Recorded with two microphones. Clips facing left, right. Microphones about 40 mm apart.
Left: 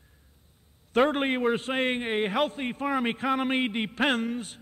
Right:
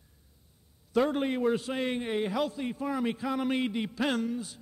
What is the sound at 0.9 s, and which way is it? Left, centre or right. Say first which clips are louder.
A man's voice: left 3 dB; left.